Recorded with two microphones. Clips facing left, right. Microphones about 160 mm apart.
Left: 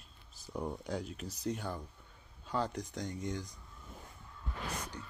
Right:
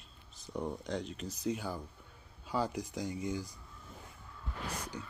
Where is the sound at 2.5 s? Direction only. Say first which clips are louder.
Right 1 dB; 5° right (ahead or behind).